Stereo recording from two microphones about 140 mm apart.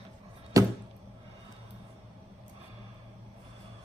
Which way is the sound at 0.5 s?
25° right (ahead or behind).